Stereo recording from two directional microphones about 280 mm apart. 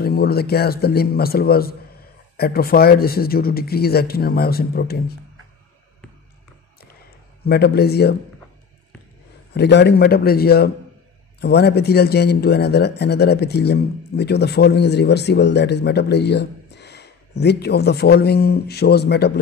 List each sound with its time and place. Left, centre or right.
0.0 s speech: left
7.4 s speech: left
9.5 s speech: left